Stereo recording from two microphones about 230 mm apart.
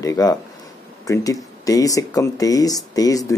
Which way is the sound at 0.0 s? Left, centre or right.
Centre.